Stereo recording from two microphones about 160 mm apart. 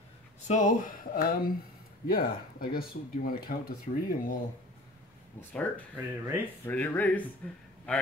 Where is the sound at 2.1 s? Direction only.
65° left (ahead or behind).